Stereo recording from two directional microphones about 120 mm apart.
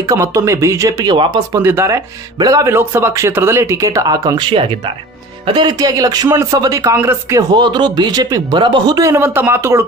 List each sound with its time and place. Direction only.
0.1 s speech: 25° right (ahead or behind)
1.1 s speech: 45° right (ahead or behind)
1.6 s speech: 20° right (ahead or behind)
7.5 s speech: 35° right (ahead or behind)